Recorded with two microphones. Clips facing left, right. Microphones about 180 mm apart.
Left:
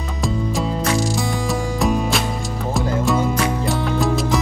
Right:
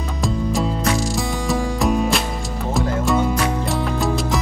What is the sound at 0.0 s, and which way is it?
Music, centre (ahead or behind).